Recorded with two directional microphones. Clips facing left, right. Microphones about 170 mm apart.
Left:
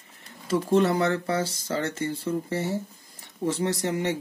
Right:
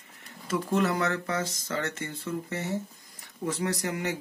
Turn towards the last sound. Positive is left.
turn(degrees=30)  # may be behind; listen again after turning